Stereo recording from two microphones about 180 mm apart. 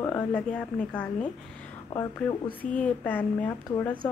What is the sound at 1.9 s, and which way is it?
Speech, 20° left (ahead or behind).